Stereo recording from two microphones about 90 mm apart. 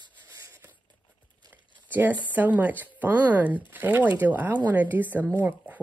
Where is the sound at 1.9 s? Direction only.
20° right (ahead or behind).